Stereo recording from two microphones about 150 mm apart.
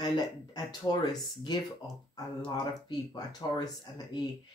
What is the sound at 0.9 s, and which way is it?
Speech, 30° left (ahead or behind).